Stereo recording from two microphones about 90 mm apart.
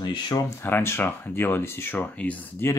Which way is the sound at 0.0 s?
55° left (ahead or behind).